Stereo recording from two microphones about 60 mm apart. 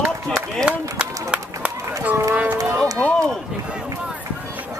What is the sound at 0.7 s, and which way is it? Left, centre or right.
Run, centre.